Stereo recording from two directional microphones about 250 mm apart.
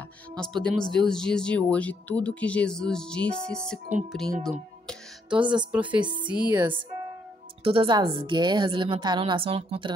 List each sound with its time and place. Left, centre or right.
0.4 s speech: centre
4.4 s music: centre
5.7 s speech: centre
7.6 s a woman's voice: right